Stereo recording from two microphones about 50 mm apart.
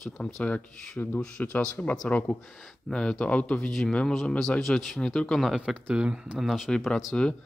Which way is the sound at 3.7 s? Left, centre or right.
Centre.